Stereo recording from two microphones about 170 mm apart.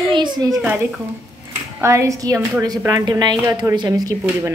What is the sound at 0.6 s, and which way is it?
A woman's voice, 10° right (ahead or behind).